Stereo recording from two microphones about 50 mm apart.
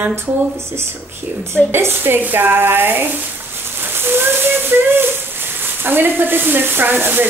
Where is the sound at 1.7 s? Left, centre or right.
Right.